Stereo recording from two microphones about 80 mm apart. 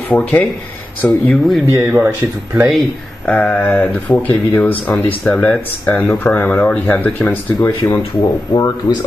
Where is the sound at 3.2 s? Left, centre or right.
Centre.